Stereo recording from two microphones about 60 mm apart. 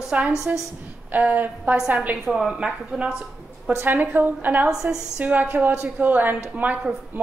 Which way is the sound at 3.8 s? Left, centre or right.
Right.